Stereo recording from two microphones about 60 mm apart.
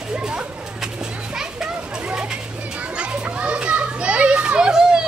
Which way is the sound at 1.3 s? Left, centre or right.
Centre.